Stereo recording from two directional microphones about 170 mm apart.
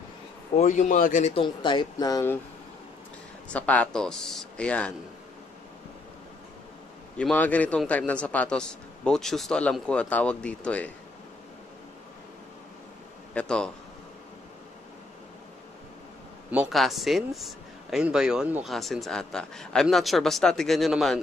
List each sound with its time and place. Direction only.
0.6 s a man's voice: 45° left (ahead or behind)
1.3 s speech: 30° left (ahead or behind)
3.4 s a man's voice: 5° left (ahead or behind)
7.2 s a man's voice: 10° left (ahead or behind)
13.3 s a man's voice: 5° left (ahead or behind)
16.4 s a man's voice: 5° right (ahead or behind)